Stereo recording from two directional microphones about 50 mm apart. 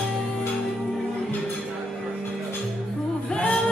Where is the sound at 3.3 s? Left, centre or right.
Left.